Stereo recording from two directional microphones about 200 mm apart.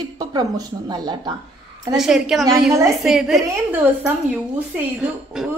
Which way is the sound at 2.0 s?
Centre (ahead or behind).